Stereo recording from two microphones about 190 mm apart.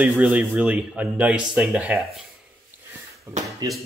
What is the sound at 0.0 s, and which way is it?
Speech, 5° right (ahead or behind).